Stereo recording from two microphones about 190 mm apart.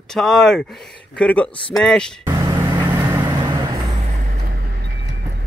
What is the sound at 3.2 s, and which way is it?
Vehicle, 20° right (ahead or behind).